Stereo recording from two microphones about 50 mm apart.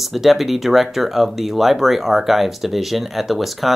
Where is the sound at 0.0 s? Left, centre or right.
Centre.